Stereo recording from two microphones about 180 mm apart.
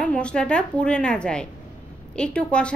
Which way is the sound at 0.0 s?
5° left (ahead or behind).